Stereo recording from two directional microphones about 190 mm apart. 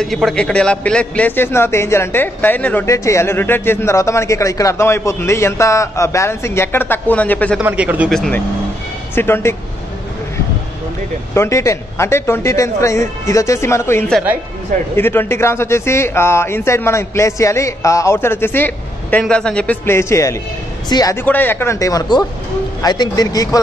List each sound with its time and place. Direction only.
0.0 s a man's voice: centre (ahead or behind)
7.6 s a man's voice: 10° right (ahead or behind); by 9.6 s 10° left (ahead or behind)
11.3 s a man's voice: 15° left (ahead or behind)